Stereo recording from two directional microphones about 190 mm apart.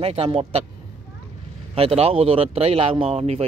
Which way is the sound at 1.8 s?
30° right (ahead or behind).